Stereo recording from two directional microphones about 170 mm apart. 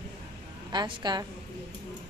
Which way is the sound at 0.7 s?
25° right (ahead or behind).